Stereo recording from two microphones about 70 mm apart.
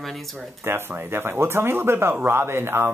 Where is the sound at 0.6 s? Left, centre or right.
Right.